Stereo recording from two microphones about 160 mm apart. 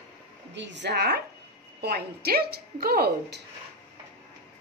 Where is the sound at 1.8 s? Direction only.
80° right.